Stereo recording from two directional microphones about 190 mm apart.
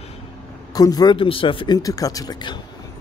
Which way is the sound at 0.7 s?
20° left (ahead or behind).